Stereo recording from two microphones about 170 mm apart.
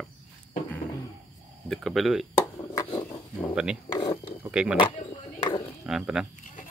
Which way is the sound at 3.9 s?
25° left (ahead or behind).